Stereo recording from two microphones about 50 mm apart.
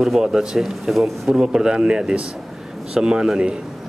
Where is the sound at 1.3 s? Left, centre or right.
Centre.